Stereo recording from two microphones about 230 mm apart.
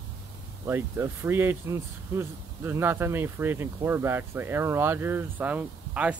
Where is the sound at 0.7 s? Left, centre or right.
Centre.